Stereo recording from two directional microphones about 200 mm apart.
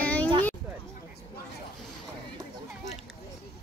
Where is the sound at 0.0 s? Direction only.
5° left (ahead or behind).